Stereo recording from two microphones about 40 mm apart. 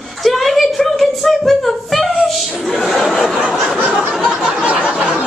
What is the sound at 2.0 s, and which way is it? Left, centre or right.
Chuckle, centre.